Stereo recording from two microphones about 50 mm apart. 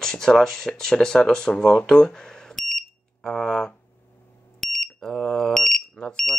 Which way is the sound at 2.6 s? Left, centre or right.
Centre.